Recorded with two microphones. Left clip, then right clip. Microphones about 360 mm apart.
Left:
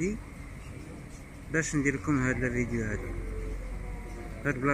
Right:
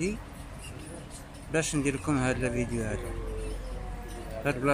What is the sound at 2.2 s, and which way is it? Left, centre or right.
Speech, right.